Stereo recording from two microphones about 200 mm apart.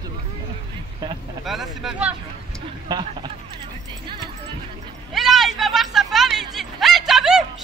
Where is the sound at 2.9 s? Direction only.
25° right (ahead or behind).